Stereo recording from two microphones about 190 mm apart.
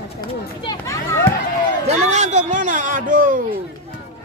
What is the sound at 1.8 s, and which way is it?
Speech, 35° right (ahead or behind).